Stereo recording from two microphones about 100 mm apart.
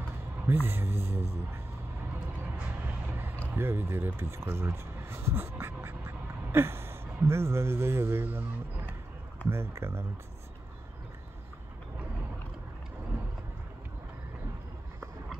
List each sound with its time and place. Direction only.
0.5 s speech: 20° right (ahead or behind)
3.1 s a sound: 20° right (ahead or behind)
3.5 s speech: 25° right (ahead or behind)
9.5 s speech: 25° right (ahead or behind)